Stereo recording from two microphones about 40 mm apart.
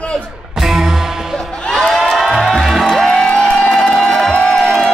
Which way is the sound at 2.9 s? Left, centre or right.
Centre.